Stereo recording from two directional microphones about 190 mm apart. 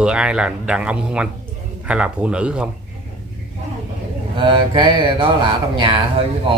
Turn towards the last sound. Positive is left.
turn(degrees=-25)  # may be behind; listen again after turning